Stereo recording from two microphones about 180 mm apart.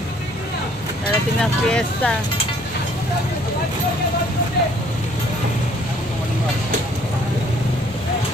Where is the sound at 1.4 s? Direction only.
5° left (ahead or behind).